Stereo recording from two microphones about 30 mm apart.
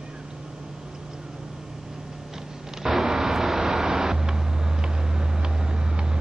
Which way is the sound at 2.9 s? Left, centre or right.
Centre.